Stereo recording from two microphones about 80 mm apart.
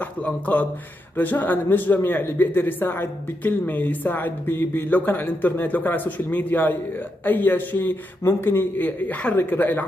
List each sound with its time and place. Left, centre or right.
0.0 s a man's voice: left